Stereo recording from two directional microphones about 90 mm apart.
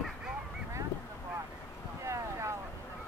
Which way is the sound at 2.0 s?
35° right (ahead or behind).